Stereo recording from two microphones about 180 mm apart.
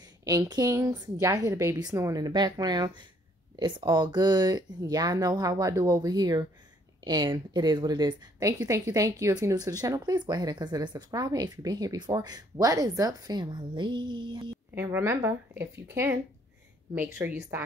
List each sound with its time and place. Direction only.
0.0 s a woman's voice: 20° right (ahead or behind)
14.8 s speech: 10° right (ahead or behind)